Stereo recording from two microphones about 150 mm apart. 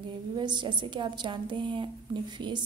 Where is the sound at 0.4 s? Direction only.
30° right (ahead or behind).